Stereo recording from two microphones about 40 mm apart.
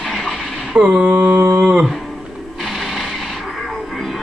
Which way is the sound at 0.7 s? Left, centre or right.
Right.